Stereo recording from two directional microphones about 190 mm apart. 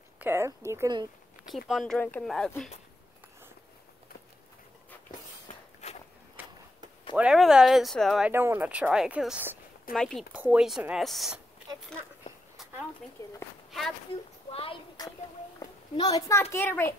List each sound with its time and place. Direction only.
0.2 s speech: 15° right (ahead or behind)
1.7 s speech: centre (ahead or behind)
6.4 s a sound: 10° right (ahead or behind)
7.2 s speech: 5° right (ahead or behind)
8.3 s speech: 10° right (ahead or behind)
13.2 s a child's voice: 20° left (ahead or behind)
13.7 s a sound: centre (ahead or behind)
14.5 s a woman's voice: 30° left (ahead or behind); by 16.9 s 10° left (ahead or behind)